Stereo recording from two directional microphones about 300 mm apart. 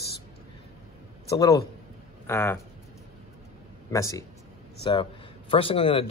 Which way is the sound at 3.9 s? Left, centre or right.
Centre.